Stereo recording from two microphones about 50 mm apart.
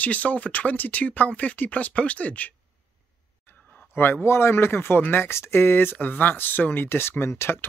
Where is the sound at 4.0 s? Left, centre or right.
Left.